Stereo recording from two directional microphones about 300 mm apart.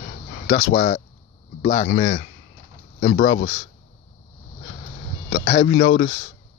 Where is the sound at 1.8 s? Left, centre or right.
Left.